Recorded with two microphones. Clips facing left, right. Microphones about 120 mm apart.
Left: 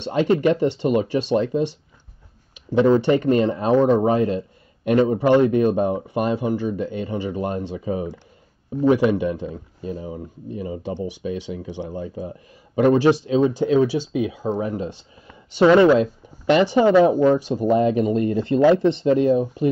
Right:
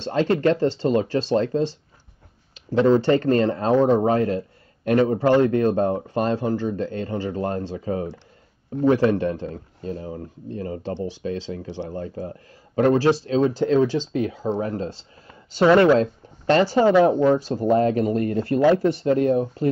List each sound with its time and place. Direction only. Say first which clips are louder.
0.0 s a man's voice: left 1 dB; 15° left (ahead or behind)